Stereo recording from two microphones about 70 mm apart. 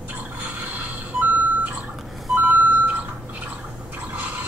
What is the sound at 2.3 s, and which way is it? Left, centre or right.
Reversing beeps, centre.